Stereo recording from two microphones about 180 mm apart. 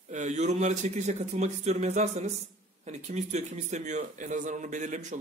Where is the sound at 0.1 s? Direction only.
40° right (ahead or behind).